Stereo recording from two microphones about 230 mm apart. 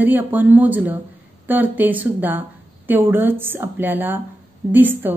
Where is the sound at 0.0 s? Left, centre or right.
Centre.